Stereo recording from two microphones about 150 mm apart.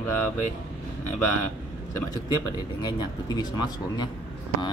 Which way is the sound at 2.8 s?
30° left (ahead or behind).